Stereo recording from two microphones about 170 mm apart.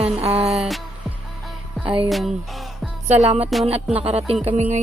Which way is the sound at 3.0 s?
40° right (ahead or behind).